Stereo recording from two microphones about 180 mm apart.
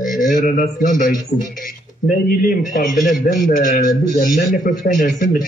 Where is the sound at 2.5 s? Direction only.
45° left (ahead or behind).